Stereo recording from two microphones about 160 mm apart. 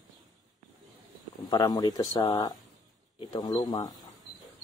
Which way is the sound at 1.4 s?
25° left (ahead or behind).